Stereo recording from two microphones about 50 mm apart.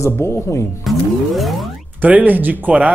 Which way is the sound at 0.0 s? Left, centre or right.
Left.